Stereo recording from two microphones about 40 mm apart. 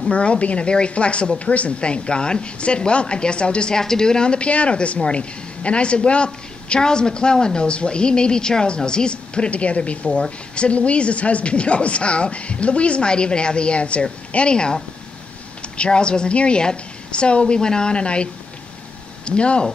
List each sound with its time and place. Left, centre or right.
0.1 s a man's voice: left
15.8 s a man's voice: left